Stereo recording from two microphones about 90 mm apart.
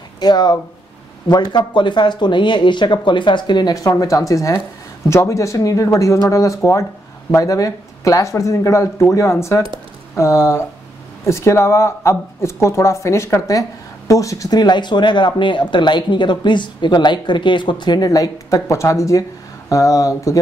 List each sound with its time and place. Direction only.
0.2 s speech: 50° left (ahead or behind)